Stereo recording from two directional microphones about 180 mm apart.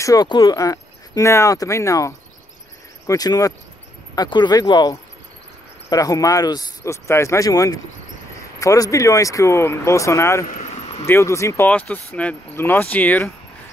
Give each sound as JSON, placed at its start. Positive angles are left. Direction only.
{"t": 0.0, "sound": "speech", "side_deg": 20}
{"t": 10.4, "sound": "a sound", "side_deg": 45}
{"t": 11.1, "sound": "speech", "side_deg": 15}